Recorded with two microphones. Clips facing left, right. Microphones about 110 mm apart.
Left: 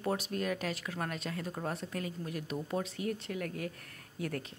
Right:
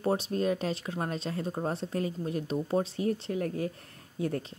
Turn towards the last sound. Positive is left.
turn(degrees=-30)  # may be behind; listen again after turning